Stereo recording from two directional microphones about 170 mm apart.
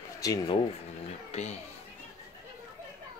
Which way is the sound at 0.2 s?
20° left (ahead or behind).